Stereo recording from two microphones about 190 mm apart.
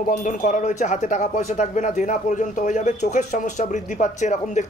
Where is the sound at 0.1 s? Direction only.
40° left (ahead or behind).